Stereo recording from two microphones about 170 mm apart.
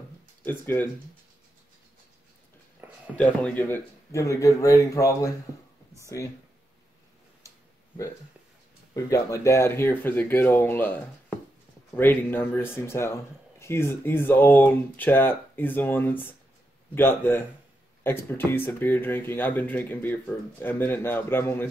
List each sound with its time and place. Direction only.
0.5 s speech: 10° left (ahead or behind)
3.2 s speech: 10° left (ahead or behind)
8.9 s speech: 15° left (ahead or behind)